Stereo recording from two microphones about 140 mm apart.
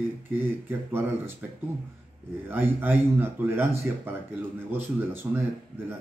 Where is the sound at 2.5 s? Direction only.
15° right (ahead or behind).